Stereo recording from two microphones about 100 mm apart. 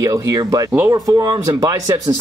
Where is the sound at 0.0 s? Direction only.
35° right (ahead or behind).